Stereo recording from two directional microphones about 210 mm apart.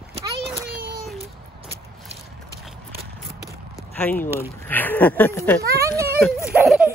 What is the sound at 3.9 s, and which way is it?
Speech, 10° left (ahead or behind).